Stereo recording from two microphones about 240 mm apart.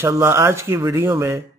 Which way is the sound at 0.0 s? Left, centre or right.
Centre.